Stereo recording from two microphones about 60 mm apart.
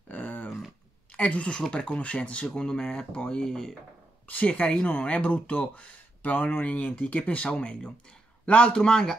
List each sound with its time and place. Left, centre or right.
0.1 s a sound: left
1.1 s a woman's voice: left
2.4 s speech: centre
4.3 s speech: left